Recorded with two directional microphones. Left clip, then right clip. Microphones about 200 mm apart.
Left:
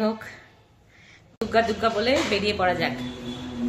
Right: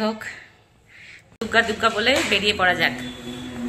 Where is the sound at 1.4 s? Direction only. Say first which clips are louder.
Right 3 dB; centre (ahead or behind).